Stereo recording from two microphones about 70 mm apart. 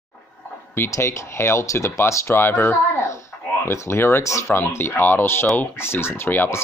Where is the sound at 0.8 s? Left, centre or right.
Left.